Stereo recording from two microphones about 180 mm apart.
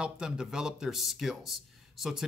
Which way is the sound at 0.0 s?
5° right (ahead or behind).